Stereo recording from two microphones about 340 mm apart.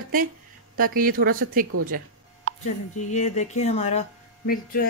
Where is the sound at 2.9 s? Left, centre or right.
Left.